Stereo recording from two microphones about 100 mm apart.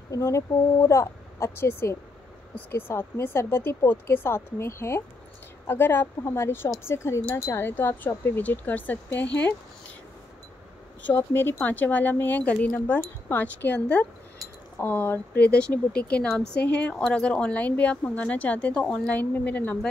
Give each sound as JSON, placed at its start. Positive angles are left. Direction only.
{"t": 0.1, "sound": "speech", "side_deg": 30}
{"t": 11.1, "sound": "speech", "side_deg": 25}